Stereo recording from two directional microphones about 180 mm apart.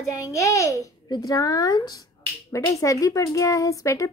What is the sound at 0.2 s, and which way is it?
Speech, 15° left (ahead or behind).